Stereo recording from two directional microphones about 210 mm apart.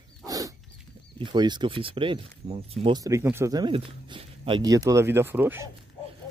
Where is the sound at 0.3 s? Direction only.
15° right (ahead or behind).